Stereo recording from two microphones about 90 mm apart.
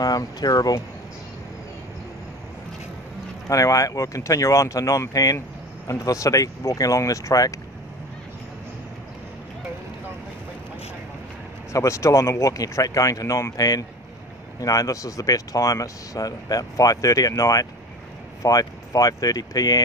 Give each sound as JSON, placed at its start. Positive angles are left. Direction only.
{"t": 0.0, "sound": "speech", "side_deg": 45}
{"t": 3.4, "sound": "speech", "side_deg": 40}
{"t": 11.7, "sound": "speech", "side_deg": 35}